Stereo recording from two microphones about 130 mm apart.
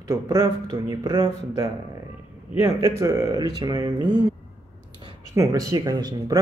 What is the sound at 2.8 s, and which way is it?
Speech, 20° right (ahead or behind).